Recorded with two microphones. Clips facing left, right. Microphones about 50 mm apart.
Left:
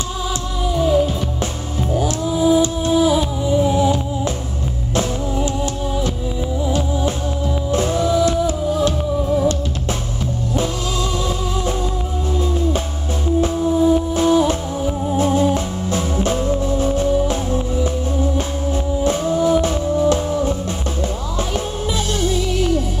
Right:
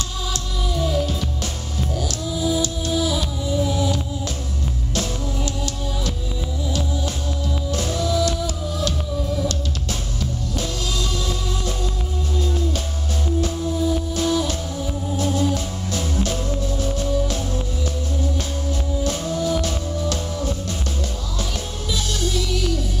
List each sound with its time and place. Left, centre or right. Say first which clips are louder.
0.7 s music: left 7 dB; left
13.4 s music: left 8 dB; left
21.9 s music: left 3 dB; left